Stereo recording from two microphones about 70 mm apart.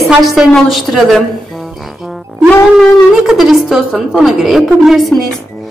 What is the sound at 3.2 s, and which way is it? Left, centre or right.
A woman's voice, centre.